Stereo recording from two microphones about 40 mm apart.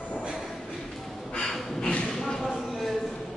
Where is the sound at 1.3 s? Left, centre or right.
Centre.